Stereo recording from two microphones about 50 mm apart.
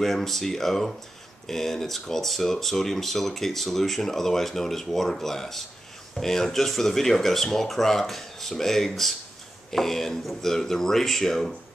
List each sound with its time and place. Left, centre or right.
0.0 s speech: centre